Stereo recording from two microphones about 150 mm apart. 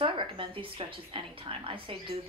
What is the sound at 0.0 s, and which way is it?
A woman's voice, 35° right (ahead or behind).